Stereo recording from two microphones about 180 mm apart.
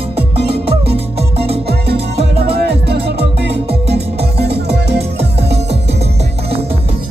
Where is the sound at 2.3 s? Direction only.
60° right (ahead or behind).